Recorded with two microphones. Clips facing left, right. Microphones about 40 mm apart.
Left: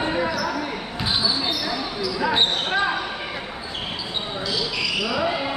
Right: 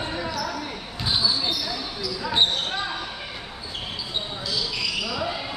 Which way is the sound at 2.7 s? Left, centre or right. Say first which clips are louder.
Left 7 dB; left.